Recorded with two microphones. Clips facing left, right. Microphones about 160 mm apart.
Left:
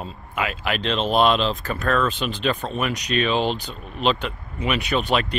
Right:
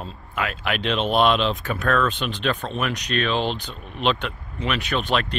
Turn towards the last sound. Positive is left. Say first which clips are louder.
# left 2 dB
turn(degrees=5)  # may be behind; listen again after turning